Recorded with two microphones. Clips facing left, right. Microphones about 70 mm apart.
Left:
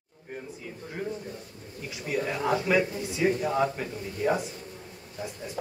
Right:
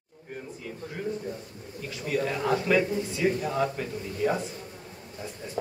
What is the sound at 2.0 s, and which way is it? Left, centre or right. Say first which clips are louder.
A man's voice: right 1 dB; centre.